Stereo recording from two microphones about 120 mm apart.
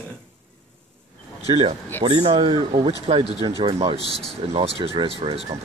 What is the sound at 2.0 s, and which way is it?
Speech, 40° right (ahead or behind).